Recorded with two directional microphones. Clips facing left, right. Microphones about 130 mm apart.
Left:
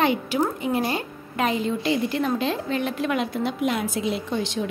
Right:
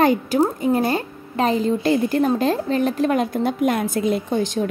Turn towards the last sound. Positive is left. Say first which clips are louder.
# right 5 dB
turn(degrees=-45)  # may be behind; listen again after turning